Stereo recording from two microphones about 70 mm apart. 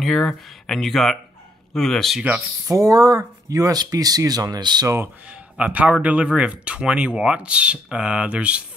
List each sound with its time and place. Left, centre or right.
0.0 s speech: centre
2.7 s speech: right
4.8 s speech: right
5.3 s speech: centre